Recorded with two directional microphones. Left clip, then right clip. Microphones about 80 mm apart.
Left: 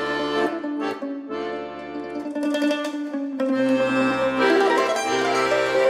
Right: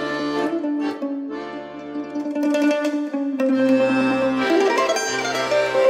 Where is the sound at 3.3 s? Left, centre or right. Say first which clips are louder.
Right 3 dB; centre.